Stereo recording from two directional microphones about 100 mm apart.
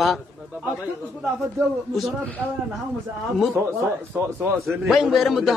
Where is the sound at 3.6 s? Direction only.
25° right (ahead or behind).